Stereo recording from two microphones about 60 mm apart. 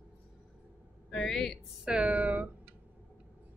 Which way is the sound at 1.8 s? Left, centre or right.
Centre.